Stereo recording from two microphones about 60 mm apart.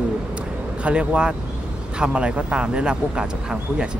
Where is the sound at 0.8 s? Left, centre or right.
Centre.